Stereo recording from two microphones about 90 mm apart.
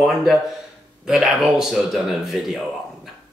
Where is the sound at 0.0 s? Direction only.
Centre (ahead or behind).